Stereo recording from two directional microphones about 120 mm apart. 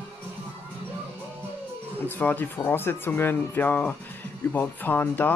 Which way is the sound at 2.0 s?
15° left (ahead or behind).